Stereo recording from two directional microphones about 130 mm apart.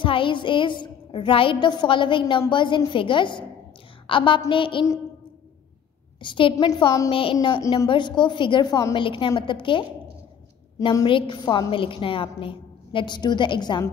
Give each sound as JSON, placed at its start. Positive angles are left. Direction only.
{"t": 0.0, "sound": "a woman's voice", "side_deg": 40}
{"t": 6.2, "sound": "a woman's voice", "side_deg": 40}
{"t": 7.1, "sound": "a woman's voice", "side_deg": 45}